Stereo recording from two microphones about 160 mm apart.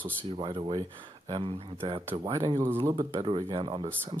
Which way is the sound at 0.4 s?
30° right (ahead or behind).